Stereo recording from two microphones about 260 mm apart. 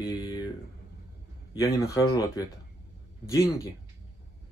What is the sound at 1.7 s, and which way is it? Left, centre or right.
Speech, centre.